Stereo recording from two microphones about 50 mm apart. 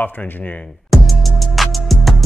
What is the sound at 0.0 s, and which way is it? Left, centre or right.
Speech, left.